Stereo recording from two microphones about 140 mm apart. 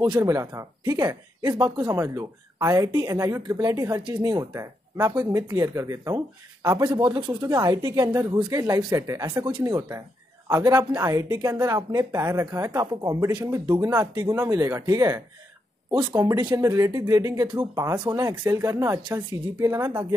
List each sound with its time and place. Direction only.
0.2 s speech: 20° right (ahead or behind)
4.6 s speech: 20° right (ahead or behind)
15.9 s speech: 30° right (ahead or behind)